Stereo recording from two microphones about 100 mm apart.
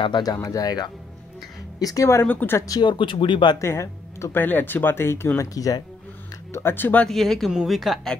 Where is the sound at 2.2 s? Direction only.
20° left (ahead or behind).